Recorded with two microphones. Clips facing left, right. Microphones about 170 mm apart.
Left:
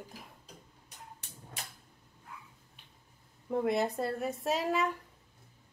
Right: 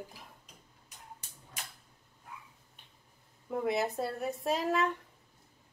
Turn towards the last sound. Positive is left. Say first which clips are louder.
# even
turn(degrees=0)  # may be behind; listen again after turning